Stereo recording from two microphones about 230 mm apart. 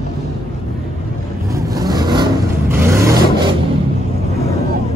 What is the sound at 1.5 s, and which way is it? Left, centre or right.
Vehicle, centre.